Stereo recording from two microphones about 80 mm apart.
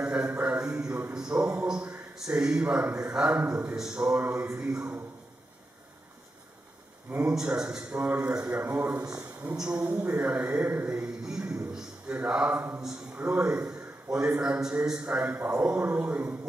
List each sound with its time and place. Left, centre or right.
0.0 s a man's voice: centre
7.2 s a man's voice: centre
9.1 s a sound: right
9.6 s a man's voice: centre
10.7 s mantra: right
11.5 s a sound: centre
12.5 s a man's voice: centre